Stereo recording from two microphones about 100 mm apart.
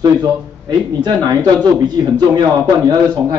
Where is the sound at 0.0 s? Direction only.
40° right (ahead or behind).